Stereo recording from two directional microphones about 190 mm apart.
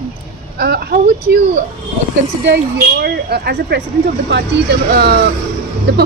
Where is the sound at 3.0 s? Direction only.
55° right (ahead or behind).